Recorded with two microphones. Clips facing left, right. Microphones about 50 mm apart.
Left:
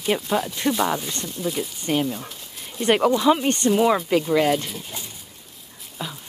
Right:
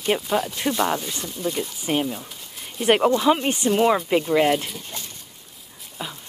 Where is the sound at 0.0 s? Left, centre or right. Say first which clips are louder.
Even; centre.